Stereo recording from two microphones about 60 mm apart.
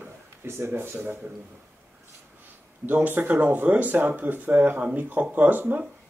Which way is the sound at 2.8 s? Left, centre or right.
Right.